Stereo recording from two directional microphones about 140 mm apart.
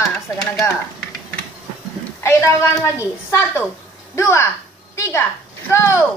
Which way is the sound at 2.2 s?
20° left (ahead or behind).